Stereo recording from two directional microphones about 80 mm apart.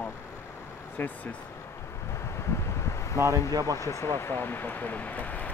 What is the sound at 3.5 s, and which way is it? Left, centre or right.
Speech, right.